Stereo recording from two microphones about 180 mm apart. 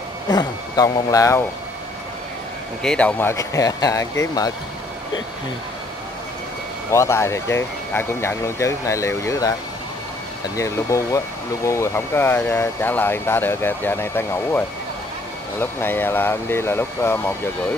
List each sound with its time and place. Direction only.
0.3 s speech: 20° left (ahead or behind)
2.8 s speech: 5° left (ahead or behind)
6.9 s speech: 15° left (ahead or behind)
15.6 s speech: 10° left (ahead or behind)